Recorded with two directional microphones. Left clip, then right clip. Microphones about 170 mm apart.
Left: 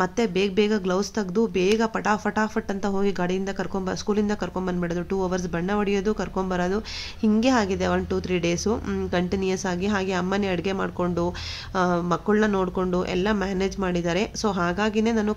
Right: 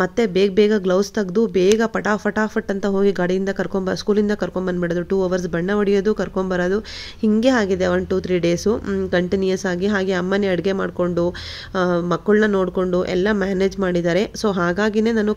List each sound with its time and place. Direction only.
0.0 s speech: 25° right (ahead or behind)